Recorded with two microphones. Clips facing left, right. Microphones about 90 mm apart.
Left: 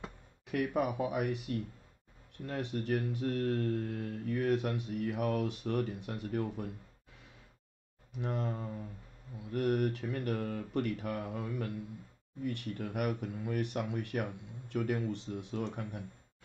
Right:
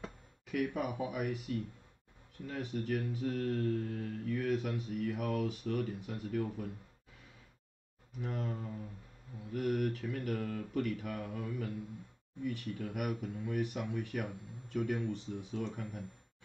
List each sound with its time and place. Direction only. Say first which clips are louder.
0.5 s speech: left 3 dB; 60° left (ahead or behind)
8.2 s speech: left 3 dB; 65° left (ahead or behind)
9.6 s speech: left 2 dB; 60° left (ahead or behind)